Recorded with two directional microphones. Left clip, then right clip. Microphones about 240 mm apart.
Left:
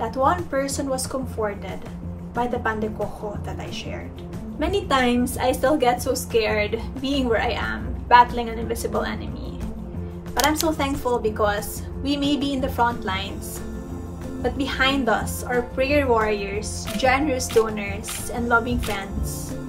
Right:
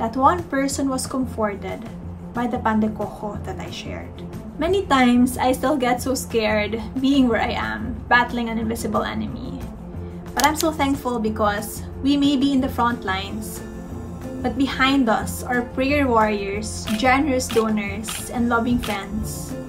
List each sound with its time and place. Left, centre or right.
0.0 s a woman's voice: centre
2.3 s a woman's voice: centre
4.6 s a woman's voice: centre
10.3 s a woman's voice: centre
14.4 s a woman's voice: centre